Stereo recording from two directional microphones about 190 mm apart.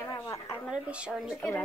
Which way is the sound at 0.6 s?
5° right (ahead or behind).